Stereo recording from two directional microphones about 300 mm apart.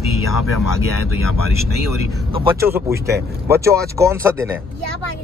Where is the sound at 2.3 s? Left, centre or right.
Centre.